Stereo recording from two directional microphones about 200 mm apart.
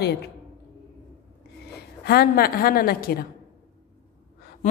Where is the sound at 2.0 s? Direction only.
50° left (ahead or behind).